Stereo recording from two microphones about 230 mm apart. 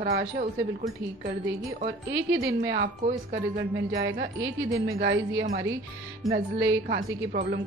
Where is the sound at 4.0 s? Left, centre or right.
Right.